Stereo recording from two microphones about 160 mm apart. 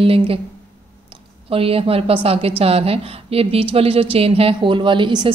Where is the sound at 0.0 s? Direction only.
35° right (ahead or behind).